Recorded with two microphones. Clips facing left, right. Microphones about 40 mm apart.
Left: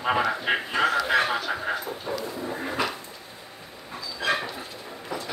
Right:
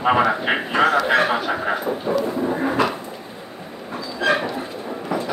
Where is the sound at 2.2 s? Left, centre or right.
Right.